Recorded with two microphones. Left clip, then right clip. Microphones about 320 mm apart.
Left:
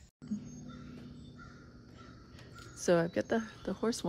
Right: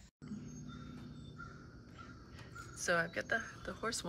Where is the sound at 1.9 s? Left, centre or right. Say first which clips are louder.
Right 1 dB; centre.